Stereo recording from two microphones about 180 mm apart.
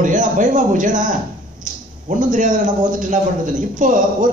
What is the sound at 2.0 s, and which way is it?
A man's voice, 45° right (ahead or behind).